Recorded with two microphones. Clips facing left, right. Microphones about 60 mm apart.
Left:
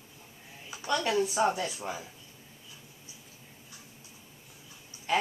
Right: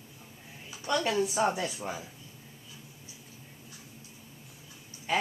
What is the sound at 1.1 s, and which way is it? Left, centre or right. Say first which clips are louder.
Speech: left 1 dB; centre.